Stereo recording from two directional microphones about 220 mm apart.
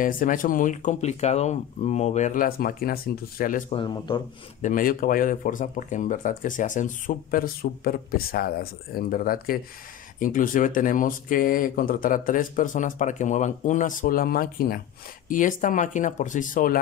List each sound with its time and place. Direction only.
0.0 s speech: 35° left (ahead or behind)
3.7 s a man's voice: 20° left (ahead or behind)
4.6 s speech: 35° left (ahead or behind)